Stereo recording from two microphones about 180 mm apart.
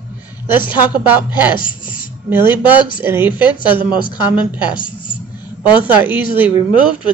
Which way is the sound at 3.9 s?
25° left (ahead or behind).